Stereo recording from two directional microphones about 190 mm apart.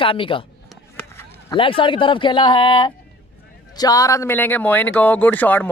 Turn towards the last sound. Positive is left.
turn(degrees=10)  # may be behind; listen again after turning